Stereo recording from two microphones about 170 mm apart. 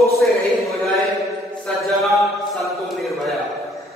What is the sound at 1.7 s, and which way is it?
A man's voice, 5° left (ahead or behind).